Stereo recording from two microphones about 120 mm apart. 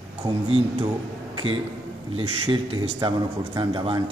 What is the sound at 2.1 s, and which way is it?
Speech, 50° right (ahead or behind).